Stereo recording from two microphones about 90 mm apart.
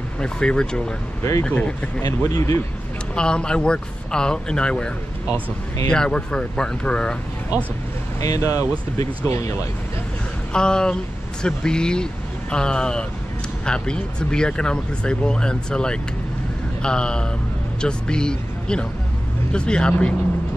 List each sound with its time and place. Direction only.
0.2 s speech: 10° left (ahead or behind)
2.2 s speech: 35° left (ahead or behind)
3.2 s speech: 10° left (ahead or behind)
8.2 s speech: 40° left (ahead or behind)
10.5 s speech: 10° left (ahead or behind)